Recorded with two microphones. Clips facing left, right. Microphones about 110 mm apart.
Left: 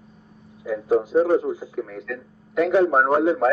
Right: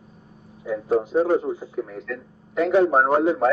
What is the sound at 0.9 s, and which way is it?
Speech, 5° left (ahead or behind).